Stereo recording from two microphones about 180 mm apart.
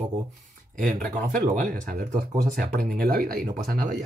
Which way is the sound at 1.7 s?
55° right (ahead or behind).